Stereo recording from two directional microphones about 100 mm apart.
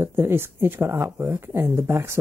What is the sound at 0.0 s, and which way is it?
Speech, 25° right (ahead or behind).